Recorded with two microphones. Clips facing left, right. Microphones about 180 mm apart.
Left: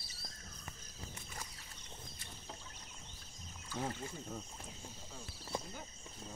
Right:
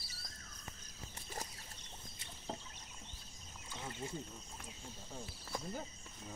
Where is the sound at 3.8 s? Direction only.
45° left (ahead or behind).